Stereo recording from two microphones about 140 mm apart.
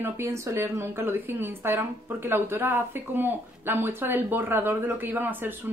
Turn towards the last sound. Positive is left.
turn(degrees=-15)  # may be behind; listen again after turning